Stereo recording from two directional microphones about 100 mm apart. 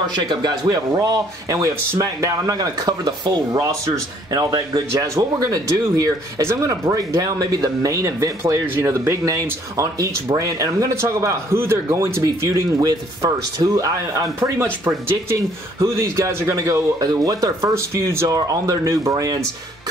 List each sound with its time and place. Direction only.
0.1 s speech: 45° right (ahead or behind)